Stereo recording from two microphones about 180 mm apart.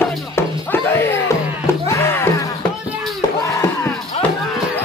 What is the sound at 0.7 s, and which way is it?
Music, 10° left (ahead or behind).